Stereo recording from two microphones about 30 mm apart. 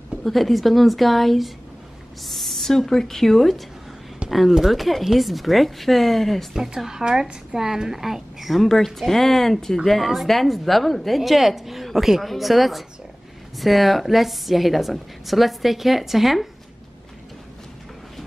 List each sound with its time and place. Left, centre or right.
0.2 s a woman's voice: centre
2.2 s a sound: centre
2.9 s a woman's voice: centre
6.9 s a woman's voice: right
8.6 s speech: centre
9.8 s a woman's voice: centre